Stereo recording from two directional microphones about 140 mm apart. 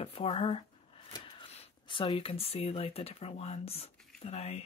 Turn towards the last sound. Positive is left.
turn(degrees=45)  # may be behind; listen again after turning